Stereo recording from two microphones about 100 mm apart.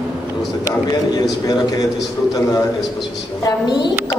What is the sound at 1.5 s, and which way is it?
Speech, 40° left (ahead or behind).